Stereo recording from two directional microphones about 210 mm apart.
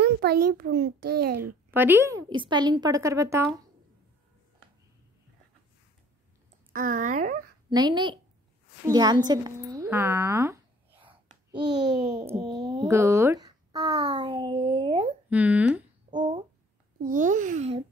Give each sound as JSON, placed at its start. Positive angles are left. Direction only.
{"t": 0.0, "sound": "a child's voice", "side_deg": -50}
{"t": 1.4, "sound": "a woman's voice", "side_deg": -10}
{"t": 6.7, "sound": "a child's voice", "side_deg": -40}
{"t": 7.7, "sound": "a woman's voice", "side_deg": -20}
{"t": 11.0, "sound": "a sound", "side_deg": -20}
{"t": 12.9, "sound": "a child's voice", "side_deg": -15}
{"t": 15.2, "sound": "a woman's voice", "side_deg": -5}
{"t": 16.1, "sound": "a sound", "side_deg": -20}
{"t": 17.0, "sound": "a child's voice", "side_deg": -40}